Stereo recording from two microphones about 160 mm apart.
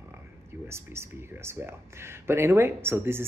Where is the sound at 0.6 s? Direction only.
15° right (ahead or behind).